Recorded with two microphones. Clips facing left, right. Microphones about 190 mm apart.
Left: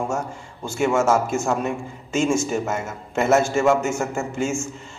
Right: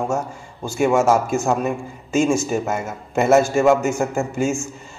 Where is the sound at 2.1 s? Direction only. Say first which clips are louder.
Right 3 dB; 55° right (ahead or behind).